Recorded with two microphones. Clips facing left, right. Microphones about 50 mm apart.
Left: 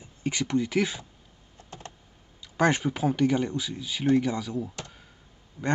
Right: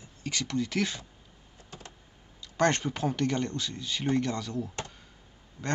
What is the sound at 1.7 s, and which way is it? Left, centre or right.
Computer keyboard, left.